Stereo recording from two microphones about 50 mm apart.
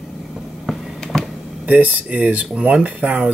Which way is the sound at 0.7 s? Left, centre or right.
Centre.